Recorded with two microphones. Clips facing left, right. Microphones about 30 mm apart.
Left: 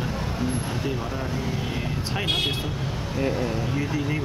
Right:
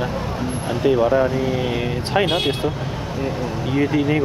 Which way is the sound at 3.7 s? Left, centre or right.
Right.